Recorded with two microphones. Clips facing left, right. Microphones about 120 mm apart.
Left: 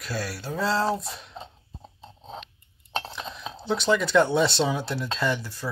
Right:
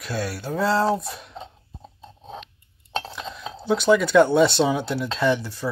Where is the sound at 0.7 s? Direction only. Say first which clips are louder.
Right 4 dB; 15° right (ahead or behind).